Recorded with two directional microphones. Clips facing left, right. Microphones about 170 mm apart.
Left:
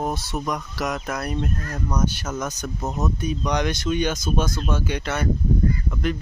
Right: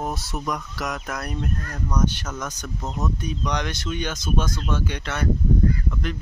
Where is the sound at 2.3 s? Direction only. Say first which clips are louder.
Left 4 dB; 25° left (ahead or behind).